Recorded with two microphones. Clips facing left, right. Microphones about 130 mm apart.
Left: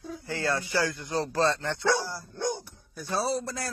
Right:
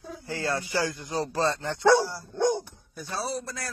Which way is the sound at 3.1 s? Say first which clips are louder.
Left 4 dB; 25° left (ahead or behind).